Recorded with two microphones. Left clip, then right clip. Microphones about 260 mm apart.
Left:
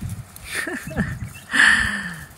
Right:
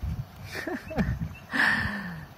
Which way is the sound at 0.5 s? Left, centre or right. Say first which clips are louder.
Left 7 dB; centre.